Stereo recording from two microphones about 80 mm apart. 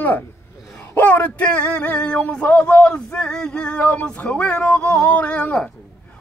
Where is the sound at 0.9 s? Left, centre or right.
Centre.